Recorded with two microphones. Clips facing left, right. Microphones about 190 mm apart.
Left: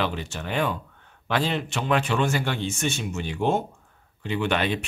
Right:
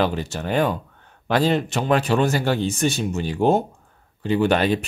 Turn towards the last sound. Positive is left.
turn(degrees=-40)  # may be behind; listen again after turning